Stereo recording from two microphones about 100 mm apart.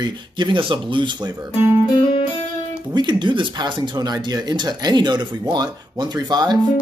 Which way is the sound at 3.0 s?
50° right (ahead or behind).